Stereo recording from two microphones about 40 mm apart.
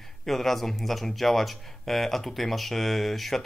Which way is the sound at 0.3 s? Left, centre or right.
Centre.